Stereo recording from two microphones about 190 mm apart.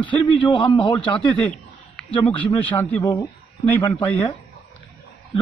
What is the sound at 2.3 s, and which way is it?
Speech, 10° left (ahead or behind).